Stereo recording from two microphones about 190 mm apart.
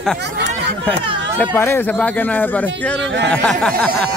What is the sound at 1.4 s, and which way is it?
A man's voice, 10° left (ahead or behind).